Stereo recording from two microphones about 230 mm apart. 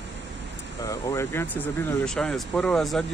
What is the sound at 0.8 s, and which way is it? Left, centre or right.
Speech, centre.